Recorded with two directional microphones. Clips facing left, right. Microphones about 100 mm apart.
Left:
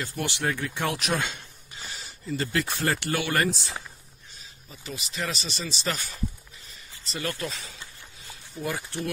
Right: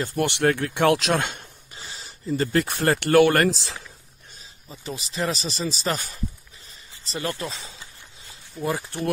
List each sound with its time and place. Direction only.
0.0 s speech: 55° right (ahead or behind)
1.8 s a sound: 35° right (ahead or behind)
2.6 s speech: 55° right (ahead or behind); by 3.7 s 90° right
4.6 s speech: 35° right (ahead or behind)
7.1 s speech: 30° right (ahead or behind)